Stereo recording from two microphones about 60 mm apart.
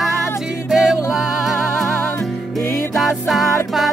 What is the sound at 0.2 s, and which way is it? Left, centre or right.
Music, centre.